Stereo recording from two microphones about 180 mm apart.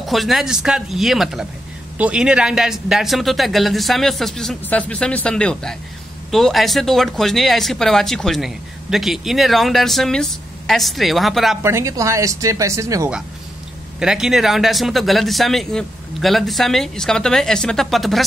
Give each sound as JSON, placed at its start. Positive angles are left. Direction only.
{"t": 0.0, "sound": "speech", "side_deg": 0}
{"t": 11.6, "sound": "speech", "side_deg": -15}
{"t": 13.9, "sound": "speech", "side_deg": -5}